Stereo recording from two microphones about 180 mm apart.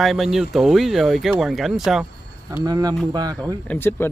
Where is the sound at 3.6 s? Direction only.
10° left (ahead or behind).